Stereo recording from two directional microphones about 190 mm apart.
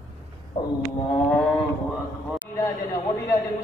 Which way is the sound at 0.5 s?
25° left (ahead or behind).